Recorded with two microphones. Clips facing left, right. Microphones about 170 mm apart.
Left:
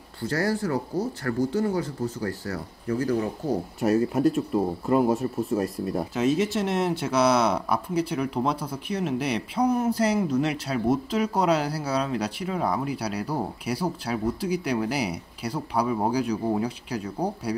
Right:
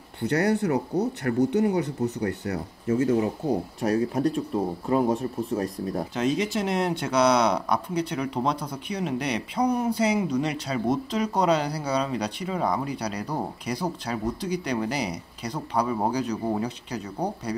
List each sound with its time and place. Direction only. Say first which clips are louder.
0.2 s speech: right 3 dB; 20° right (ahead or behind)
3.8 s speech: left 3 dB; centre (ahead or behind)